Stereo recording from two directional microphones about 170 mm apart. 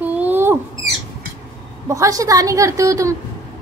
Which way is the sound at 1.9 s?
20° right (ahead or behind).